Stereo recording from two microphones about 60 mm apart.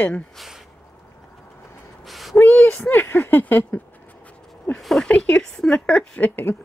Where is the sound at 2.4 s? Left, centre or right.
Left.